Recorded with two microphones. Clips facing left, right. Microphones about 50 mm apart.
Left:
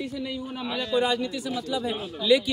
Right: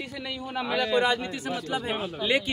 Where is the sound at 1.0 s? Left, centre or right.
Right.